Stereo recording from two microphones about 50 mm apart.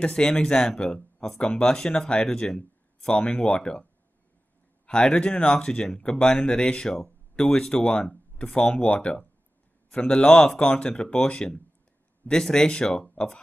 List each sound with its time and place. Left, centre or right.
0.0 s speech: centre
4.8 s speech: centre
8.8 s speech: left
9.8 s speech: centre